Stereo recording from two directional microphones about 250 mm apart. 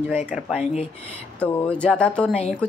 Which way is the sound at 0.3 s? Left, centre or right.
Centre.